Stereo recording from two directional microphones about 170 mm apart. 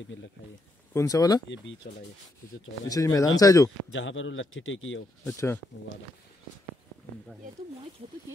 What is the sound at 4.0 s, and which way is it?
Speech, 90° left.